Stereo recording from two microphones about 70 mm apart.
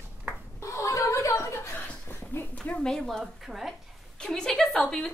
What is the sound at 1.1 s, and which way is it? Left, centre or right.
Chuckle, left.